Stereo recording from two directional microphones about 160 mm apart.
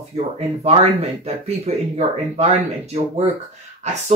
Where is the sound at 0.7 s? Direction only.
40° right (ahead or behind).